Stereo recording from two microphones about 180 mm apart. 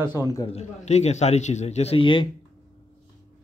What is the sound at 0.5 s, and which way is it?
A man's voice, 35° left (ahead or behind).